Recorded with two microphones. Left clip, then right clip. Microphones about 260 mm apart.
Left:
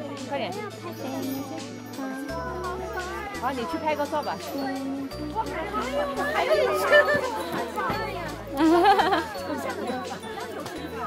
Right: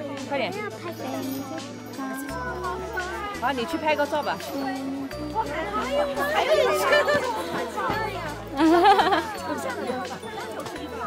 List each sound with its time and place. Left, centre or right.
3.4 s speech: right
5.6 s speech: right
8.5 s music: centre